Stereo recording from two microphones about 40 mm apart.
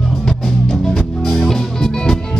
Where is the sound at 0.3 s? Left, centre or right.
Centre.